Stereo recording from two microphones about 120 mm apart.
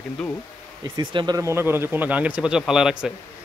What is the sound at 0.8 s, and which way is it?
Speech, 40° right (ahead or behind).